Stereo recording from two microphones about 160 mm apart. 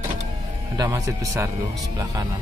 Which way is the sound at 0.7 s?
25° right (ahead or behind).